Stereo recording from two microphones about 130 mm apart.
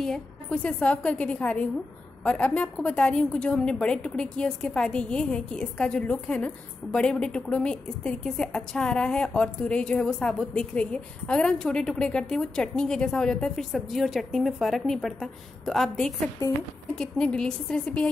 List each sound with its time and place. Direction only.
0.0 s a woman's voice: 5° left (ahead or behind)